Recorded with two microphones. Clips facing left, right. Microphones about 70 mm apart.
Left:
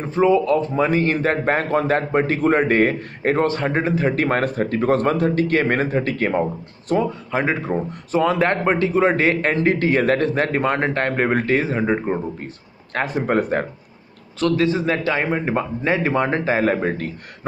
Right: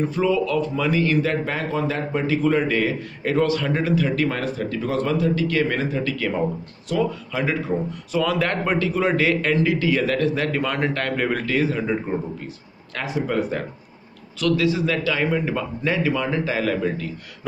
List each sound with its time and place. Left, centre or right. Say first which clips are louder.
0.0 s a man's voice: left 4 dB; left
12.9 s a man's voice: left 4 dB; left